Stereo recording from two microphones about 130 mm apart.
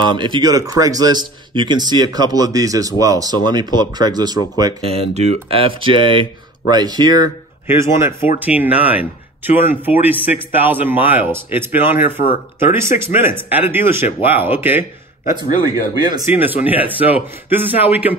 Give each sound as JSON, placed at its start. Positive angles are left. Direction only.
{"t": 0.0, "sound": "speech", "side_deg": -35}
{"t": 4.8, "sound": "speech", "side_deg": -55}
{"t": 7.6, "sound": "speech", "side_deg": -20}
{"t": 15.9, "sound": "speech", "side_deg": -30}
{"t": 16.3, "sound": "speech", "side_deg": -15}